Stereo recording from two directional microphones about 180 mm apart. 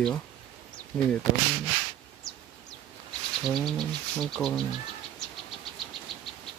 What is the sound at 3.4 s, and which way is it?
Speech, 5° left (ahead or behind).